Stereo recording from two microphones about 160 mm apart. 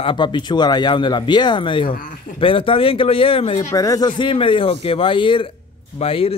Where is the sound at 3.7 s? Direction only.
20° left (ahead or behind).